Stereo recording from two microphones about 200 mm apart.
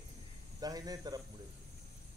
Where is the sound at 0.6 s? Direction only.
20° right (ahead or behind).